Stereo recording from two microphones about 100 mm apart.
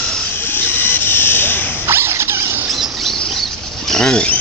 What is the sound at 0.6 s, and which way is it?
Helicopter, 20° left (ahead or behind).